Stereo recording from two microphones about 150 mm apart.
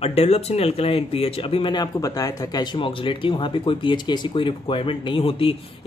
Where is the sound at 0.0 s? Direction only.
45° left (ahead or behind).